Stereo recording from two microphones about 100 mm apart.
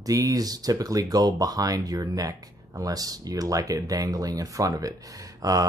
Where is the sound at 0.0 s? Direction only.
35° right (ahead or behind).